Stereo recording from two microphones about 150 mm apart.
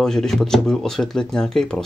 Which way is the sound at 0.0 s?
5° left (ahead or behind).